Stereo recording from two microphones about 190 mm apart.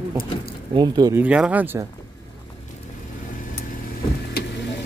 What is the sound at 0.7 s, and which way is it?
Speech, 20° right (ahead or behind).